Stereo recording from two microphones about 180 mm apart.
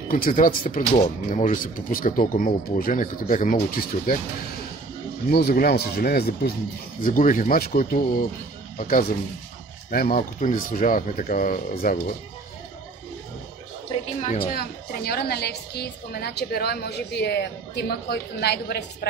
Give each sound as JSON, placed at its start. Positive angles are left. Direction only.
{"t": 0.1, "sound": "speech", "side_deg": 50}
{"t": 5.3, "sound": "a woman's voice", "side_deg": 60}
{"t": 14.4, "sound": "a woman's voice", "side_deg": 55}